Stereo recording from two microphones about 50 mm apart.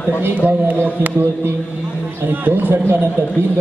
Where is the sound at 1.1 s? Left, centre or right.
Right.